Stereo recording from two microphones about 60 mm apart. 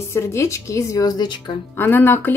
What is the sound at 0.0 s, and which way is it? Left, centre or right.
Speech, left.